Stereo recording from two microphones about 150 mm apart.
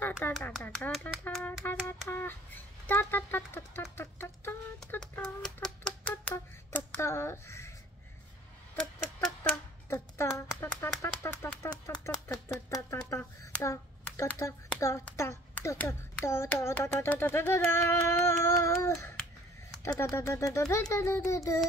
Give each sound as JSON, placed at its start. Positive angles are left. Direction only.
{"t": 0.0, "sound": "a child's voice", "side_deg": 10}
{"t": 1.3, "sound": "a sound", "side_deg": 0}
{"t": 1.6, "sound": "a child's voice", "side_deg": 15}
{"t": 5.0, "sound": "typewriter", "side_deg": 5}
{"t": 6.3, "sound": "speech", "side_deg": 15}
{"t": 9.5, "sound": "a child's voice", "side_deg": 15}
{"t": 12.0, "sound": "a child's voice", "side_deg": 20}